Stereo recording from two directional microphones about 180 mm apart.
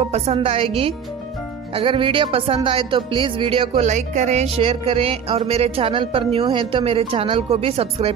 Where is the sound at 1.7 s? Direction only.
30° right (ahead or behind).